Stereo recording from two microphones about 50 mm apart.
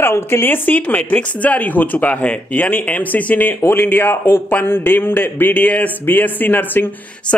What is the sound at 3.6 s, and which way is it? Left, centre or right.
A man's voice, left.